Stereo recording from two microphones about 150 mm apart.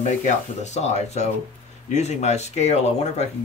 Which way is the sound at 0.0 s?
50° left (ahead or behind).